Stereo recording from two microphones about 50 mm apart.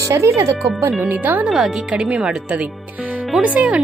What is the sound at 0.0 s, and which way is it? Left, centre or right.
Speech, right.